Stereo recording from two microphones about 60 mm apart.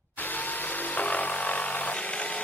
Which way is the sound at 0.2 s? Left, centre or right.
Left.